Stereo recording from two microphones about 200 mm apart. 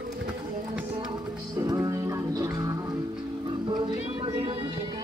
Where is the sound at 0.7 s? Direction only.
5° right (ahead or behind).